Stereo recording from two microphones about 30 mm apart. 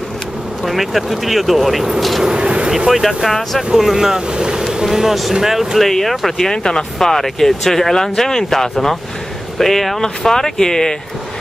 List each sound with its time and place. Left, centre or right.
0.7 s speech: centre
2.3 s speech: right
2.9 s speech: centre
4.3 s boat: right
4.8 s speech: centre
5.8 s speech: centre
6.5 s speech: left
7.0 s speech: centre